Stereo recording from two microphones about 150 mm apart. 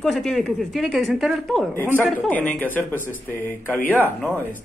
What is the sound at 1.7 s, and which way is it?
Speech, 15° left (ahead or behind).